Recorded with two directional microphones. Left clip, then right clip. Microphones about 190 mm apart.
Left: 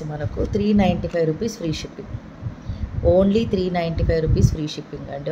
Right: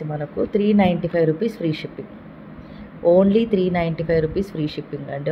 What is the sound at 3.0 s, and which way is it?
Speech, 5° right (ahead or behind).